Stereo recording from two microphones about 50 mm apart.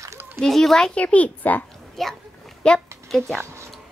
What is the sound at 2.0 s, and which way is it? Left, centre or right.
Speech, centre.